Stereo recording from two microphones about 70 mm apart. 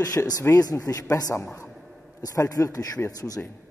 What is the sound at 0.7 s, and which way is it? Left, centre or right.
Speech, left.